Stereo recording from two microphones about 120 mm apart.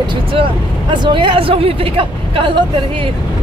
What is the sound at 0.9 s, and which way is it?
Speech, 40° right (ahead or behind).